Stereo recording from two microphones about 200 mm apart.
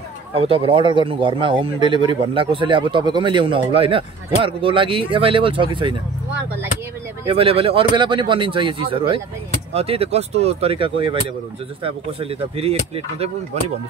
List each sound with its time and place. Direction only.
0.3 s speech: 30° right (ahead or behind)
7.2 s speech: 30° right (ahead or behind)